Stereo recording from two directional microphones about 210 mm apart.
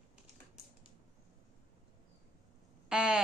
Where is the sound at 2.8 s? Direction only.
5° right (ahead or behind).